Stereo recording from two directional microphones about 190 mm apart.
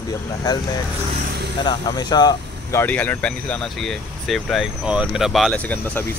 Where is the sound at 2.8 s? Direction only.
10° left (ahead or behind).